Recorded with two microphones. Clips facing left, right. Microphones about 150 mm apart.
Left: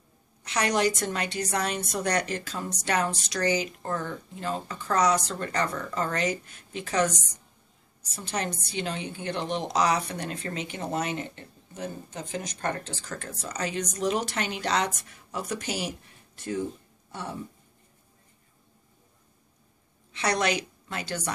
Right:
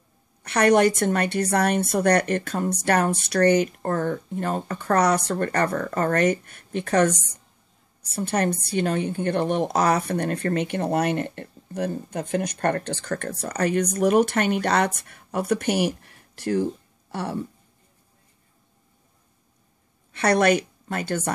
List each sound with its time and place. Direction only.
0.4 s a woman's voice: 55° right (ahead or behind); by 17.4 s 70° right (ahead or behind)
20.1 s a woman's voice: 55° right (ahead or behind)